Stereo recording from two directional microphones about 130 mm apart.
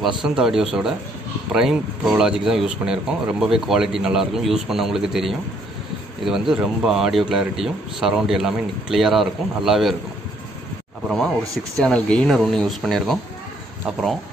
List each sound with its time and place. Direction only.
0.0 s a man's voice: 5° right (ahead or behind)
11.4 s speech: 25° right (ahead or behind)
11.8 s a man's voice: 5° left (ahead or behind)